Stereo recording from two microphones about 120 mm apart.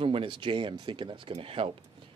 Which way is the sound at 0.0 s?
45° right (ahead or behind).